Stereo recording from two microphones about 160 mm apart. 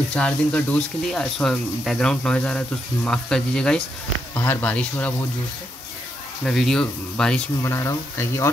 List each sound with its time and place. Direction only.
0.1 s speech: 10° left (ahead or behind)
6.4 s speech: 5° left (ahead or behind)
7.6 s speech: 20° left (ahead or behind)